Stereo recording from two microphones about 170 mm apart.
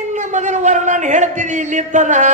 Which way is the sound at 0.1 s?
45° right (ahead or behind).